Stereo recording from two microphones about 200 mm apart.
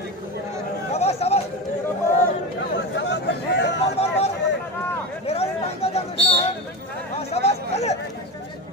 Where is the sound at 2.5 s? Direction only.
60° left (ahead or behind).